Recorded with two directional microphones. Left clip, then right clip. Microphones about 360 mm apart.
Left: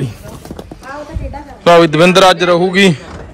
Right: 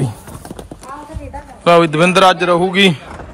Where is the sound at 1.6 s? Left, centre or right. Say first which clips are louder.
Left 3 dB; centre.